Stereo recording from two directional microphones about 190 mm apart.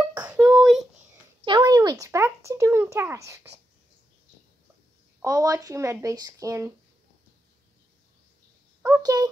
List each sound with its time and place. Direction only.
0.1 s child singing: 5° right (ahead or behind)
1.4 s speech: 20° right (ahead or behind)
5.2 s speech: 15° right (ahead or behind)
8.8 s a child's voice: 15° right (ahead or behind)